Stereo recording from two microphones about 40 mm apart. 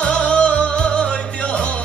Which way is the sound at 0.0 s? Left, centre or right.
Left.